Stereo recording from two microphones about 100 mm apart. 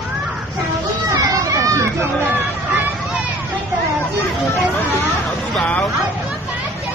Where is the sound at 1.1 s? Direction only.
35° right (ahead or behind).